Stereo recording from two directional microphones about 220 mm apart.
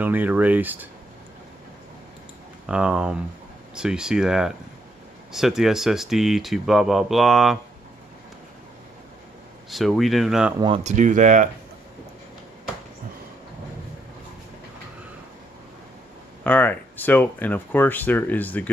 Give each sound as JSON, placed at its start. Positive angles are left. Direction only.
{"t": 0.0, "sound": "speech", "side_deg": -10}
{"t": 2.6, "sound": "speech", "side_deg": -5}
{"t": 9.7, "sound": "speech", "side_deg": 0}
{"t": 10.6, "sound": "speech", "side_deg": -25}
{"t": 16.4, "sound": "speech", "side_deg": 5}